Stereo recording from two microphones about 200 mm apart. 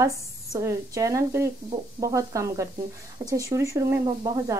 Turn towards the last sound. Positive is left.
turn(degrees=-20)  # may be behind; listen again after turning